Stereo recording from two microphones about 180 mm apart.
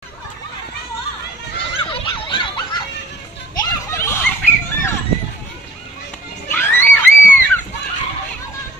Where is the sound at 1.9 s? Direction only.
25° left (ahead or behind).